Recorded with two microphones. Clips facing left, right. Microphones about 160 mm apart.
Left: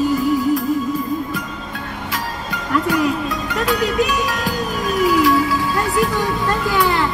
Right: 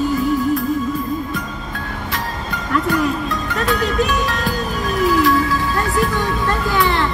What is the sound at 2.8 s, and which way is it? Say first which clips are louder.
Music: even; 10° left (ahead or behind).